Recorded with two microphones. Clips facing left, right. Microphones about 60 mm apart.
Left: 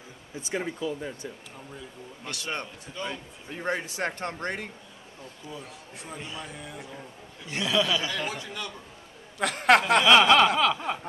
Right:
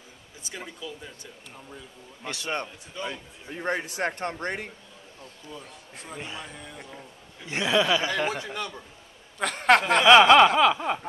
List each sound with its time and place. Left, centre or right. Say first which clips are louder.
0.5 s speech: left 8 dB; left
2.2 s speech: right 3 dB; right
2.5 s snicker: right 4 dB; centre
3.5 s a man's voice: right 1 dB; centre
4.0 s speech: right 2 dB; centre
5.5 s a man's voice: left 1 dB; centre
6.1 s speech: right 2 dB; right
6.4 s a man's voice: left 2 dB; centre
7.4 s speech: right 3 dB; right
9.4 s a man's voice: even; centre
10.0 s snicker: right 6 dB; centre